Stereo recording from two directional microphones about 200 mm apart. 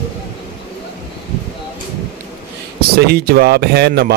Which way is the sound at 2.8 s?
50° right (ahead or behind).